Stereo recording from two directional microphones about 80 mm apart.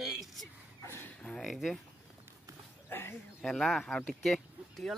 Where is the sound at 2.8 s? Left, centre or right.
Left.